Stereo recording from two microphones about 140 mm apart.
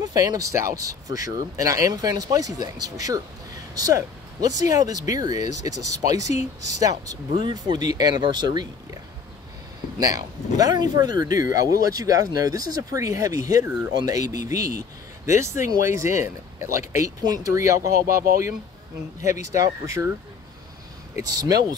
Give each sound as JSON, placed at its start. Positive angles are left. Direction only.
{"t": 0.0, "sound": "speech", "side_deg": -30}
{"t": 9.9, "sound": "speech", "side_deg": -25}
{"t": 18.0, "sound": "speech", "side_deg": -90}
{"t": 19.5, "sound": "speech", "side_deg": -25}
{"t": 21.3, "sound": "speech", "side_deg": -25}